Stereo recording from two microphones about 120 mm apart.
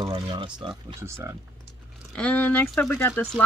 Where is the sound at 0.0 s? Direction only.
45° right (ahead or behind).